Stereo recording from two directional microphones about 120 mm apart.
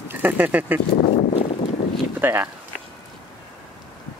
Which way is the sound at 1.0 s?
60° left (ahead or behind).